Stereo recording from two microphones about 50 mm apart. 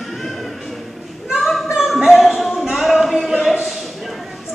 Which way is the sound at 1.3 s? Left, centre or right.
Centre.